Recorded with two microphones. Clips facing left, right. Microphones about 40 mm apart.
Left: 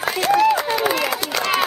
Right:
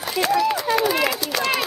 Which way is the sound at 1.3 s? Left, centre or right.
Left.